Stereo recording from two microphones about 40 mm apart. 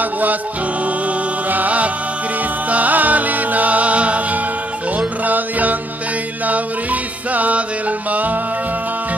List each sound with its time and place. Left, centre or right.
0.0 s music: right